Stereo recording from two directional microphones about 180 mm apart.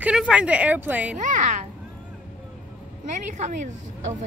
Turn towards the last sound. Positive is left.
turn(degrees=-40)  # may be behind; listen again after turning